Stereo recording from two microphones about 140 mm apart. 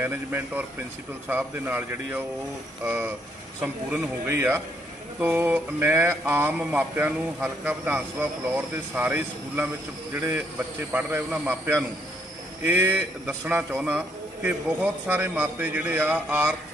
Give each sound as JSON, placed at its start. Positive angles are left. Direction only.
{"t": 0.0, "sound": "mantra", "side_deg": -15}
{"t": 10.1, "sound": "a man's voice", "side_deg": -20}
{"t": 10.9, "sound": "mantra", "side_deg": -15}